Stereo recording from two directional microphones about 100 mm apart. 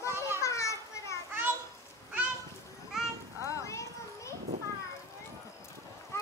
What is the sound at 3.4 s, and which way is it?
Children playing, 30° left (ahead or behind).